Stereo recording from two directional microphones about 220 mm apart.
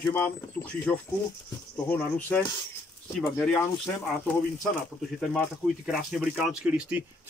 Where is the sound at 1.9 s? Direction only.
5° left (ahead or behind).